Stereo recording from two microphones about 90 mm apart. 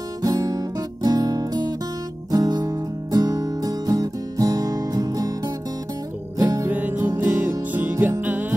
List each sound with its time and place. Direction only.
0.2 s music: 40° right (ahead or behind)
6.7 s music: 20° right (ahead or behind)